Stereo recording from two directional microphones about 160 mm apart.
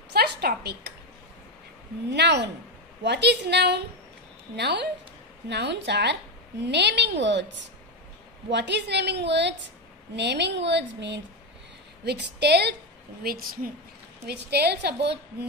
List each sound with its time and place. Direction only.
0.1 s a woman's voice: 90° right
2.0 s a woman's voice: 90° right
8.5 s a woman's voice: 90° right
13.2 s a woman's voice: 65° right (ahead or behind)
14.2 s a woman's voice: 90° right